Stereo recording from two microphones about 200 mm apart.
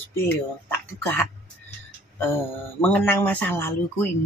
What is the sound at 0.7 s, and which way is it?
Speech, 10° left (ahead or behind).